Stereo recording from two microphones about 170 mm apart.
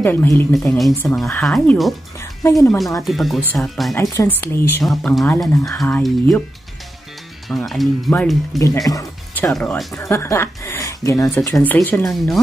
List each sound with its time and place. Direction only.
0.0 s speech: 10° left (ahead or behind)
0.6 s speech: centre (ahead or behind)
2.4 s speech: 15° left (ahead or behind)
3.0 s speech: centre (ahead or behind)
3.9 s speech: 20° left (ahead or behind)
4.8 s speech: 5° left (ahead or behind)
7.4 s speech: centre (ahead or behind)
8.5 s speech: 20° left (ahead or behind)
9.5 s speech: 5° left (ahead or behind)